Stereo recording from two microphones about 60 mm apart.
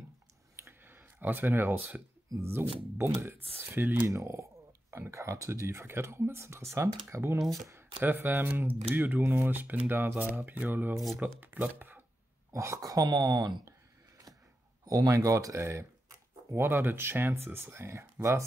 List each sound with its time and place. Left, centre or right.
0.6 s a sound: right
2.4 s speech: right
3.3 s speech: right
4.1 s speech: right
4.9 s speech: right
7.4 s speech: centre
8.0 s speech: right
9.2 s speech: right
9.5 s speech: right
12.5 s speech: right
12.8 s throat clearing: right
14.9 s speech: right
16.5 s speech: right